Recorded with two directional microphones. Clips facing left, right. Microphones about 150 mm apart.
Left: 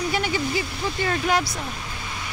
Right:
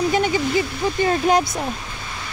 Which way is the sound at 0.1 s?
20° right (ahead or behind).